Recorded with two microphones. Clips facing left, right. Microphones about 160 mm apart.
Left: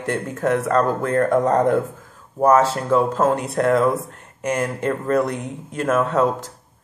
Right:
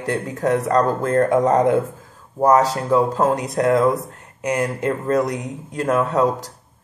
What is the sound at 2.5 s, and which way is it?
Speech, centre (ahead or behind).